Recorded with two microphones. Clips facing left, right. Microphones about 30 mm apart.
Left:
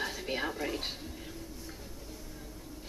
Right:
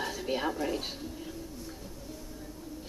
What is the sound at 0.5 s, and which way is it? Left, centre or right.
Speech, centre.